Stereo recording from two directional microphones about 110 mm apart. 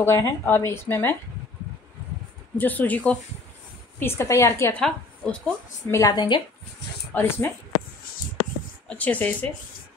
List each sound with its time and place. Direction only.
0.0 s speech: 25° left (ahead or behind)
2.6 s speech: 15° left (ahead or behind)
4.0 s speech: 25° left (ahead or behind)
4.7 s a woman's voice: 10° left (ahead or behind)
5.9 s speech: 25° left (ahead or behind)
6.1 s speech: 45° left (ahead or behind)
7.2 s speech: 20° left (ahead or behind)
8.8 s speech: 15° left (ahead or behind)